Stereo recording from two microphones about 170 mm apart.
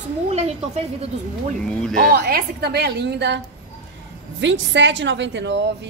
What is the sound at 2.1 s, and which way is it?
A woman's voice, 65° right (ahead or behind).